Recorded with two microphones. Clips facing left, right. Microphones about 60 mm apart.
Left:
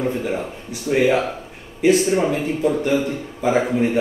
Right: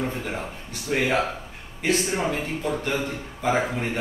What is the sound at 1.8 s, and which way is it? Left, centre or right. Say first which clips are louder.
A man's voice: left 8 dB; centre.